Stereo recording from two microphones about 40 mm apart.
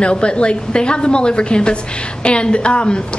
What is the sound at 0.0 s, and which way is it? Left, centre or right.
A woman's voice, left.